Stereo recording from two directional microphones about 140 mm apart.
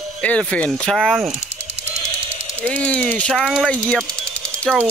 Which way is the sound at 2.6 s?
10° left (ahead or behind).